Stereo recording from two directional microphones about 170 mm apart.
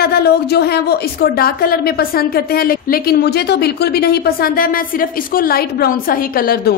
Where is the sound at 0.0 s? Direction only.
70° left (ahead or behind).